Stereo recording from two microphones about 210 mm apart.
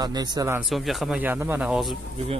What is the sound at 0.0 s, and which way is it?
Speech, 20° right (ahead or behind).